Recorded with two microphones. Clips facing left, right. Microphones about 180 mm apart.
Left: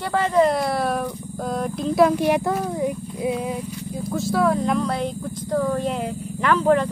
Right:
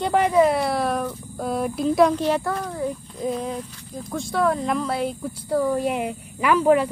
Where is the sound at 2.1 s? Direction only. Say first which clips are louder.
Left 3 dB; 15° left (ahead or behind).